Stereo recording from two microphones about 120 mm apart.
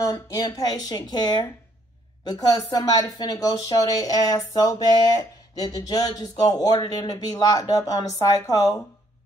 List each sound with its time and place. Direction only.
0.0 s speech: 30° left (ahead or behind)